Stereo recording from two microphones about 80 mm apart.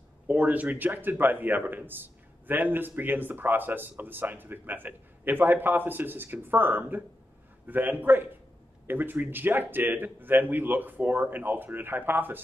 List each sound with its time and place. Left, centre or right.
0.3 s a man's voice: centre